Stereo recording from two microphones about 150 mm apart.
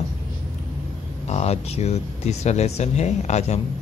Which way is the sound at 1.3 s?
45° left (ahead or behind).